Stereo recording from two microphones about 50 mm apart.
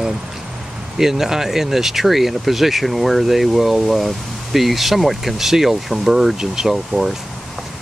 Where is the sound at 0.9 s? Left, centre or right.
Centre.